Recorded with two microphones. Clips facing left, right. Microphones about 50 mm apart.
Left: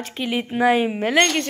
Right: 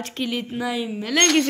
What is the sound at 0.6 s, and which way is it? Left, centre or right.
Speech, left.